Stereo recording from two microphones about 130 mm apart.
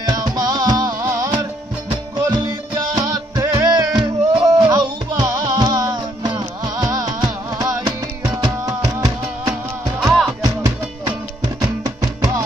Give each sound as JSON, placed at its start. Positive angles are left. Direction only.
{"t": 0.0, "sound": "music", "side_deg": -30}
{"t": 10.0, "sound": "music", "side_deg": -5}
{"t": 10.4, "sound": "music", "side_deg": -30}